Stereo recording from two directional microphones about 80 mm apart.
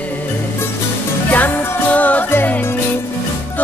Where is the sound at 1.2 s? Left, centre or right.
Left.